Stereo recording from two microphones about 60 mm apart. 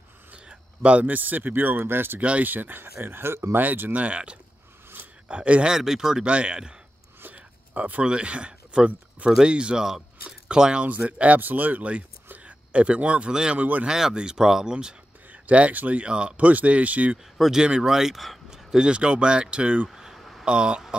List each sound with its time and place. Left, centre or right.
0.3 s speech: right
2.1 s speech: right
5.7 s speech: centre
13.6 s speech: right
13.8 s speech: centre
15.3 s speech: right
17.4 s speech: centre
19.9 s a sound: centre
20.4 s speech: centre